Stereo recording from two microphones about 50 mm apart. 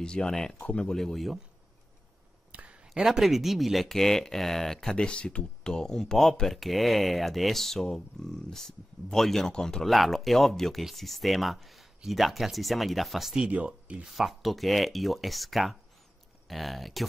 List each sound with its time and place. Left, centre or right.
0.0 s speech: centre
0.6 s speech: left
0.9 s speech: centre
2.5 s a sound: right
2.9 s speech: centre
4.9 s speech: centre
9.8 s speech: centre
13.5 s speech: right
14.0 s speech: centre